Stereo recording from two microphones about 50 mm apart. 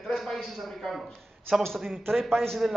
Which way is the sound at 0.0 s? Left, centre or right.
Centre.